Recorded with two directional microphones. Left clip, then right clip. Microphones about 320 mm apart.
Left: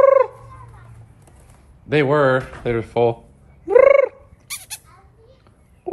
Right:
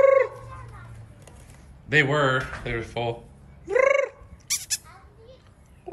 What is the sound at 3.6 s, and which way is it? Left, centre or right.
Purr, centre.